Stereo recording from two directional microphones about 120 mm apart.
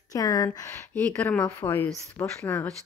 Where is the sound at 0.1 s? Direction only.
30° left (ahead or behind).